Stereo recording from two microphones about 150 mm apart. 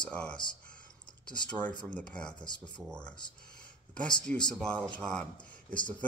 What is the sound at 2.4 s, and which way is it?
Speech, 30° left (ahead or behind).